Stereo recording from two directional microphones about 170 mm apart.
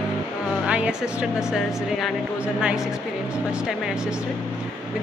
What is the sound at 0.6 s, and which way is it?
Speech, 5° right (ahead or behind).